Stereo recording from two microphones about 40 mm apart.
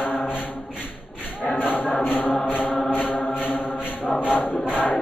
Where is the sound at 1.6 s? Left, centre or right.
Centre.